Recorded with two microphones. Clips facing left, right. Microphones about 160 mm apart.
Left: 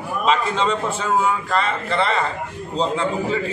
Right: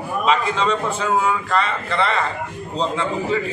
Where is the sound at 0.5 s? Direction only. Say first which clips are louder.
Even; 30° left (ahead or behind).